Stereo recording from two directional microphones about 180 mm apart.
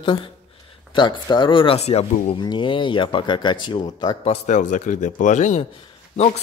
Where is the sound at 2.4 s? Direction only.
25° left (ahead or behind).